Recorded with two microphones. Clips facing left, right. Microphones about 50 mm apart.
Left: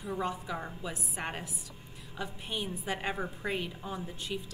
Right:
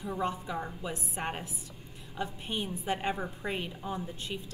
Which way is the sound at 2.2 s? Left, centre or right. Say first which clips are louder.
Right 1 dB; right.